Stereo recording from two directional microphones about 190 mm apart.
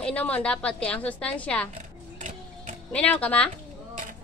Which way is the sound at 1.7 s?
40° right (ahead or behind).